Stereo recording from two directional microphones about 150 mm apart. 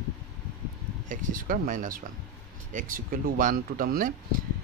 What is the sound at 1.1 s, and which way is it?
Speech, 60° right (ahead or behind).